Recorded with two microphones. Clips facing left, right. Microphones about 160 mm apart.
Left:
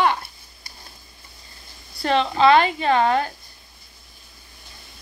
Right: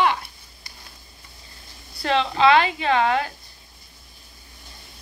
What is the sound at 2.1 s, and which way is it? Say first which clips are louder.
A woman's voice: left 1 dB; 40° left (ahead or behind).